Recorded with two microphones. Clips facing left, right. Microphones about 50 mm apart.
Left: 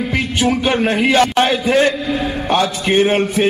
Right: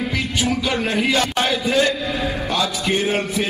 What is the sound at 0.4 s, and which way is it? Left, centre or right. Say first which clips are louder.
A man's voice: left 6 dB; left.